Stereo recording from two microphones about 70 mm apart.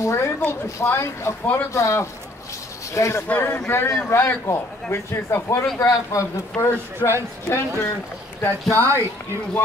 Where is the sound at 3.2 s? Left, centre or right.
Left.